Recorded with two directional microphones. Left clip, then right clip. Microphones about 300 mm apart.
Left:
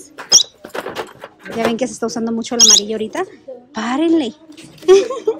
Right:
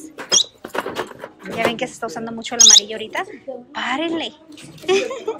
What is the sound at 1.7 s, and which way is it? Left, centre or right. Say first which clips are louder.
A woman's voice: left 4 dB; centre.